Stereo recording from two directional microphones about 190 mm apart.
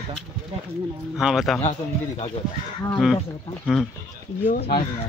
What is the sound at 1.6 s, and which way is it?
Speech, 35° left (ahead or behind).